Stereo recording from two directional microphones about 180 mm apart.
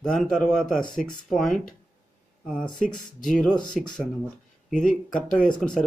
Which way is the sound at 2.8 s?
45° left (ahead or behind).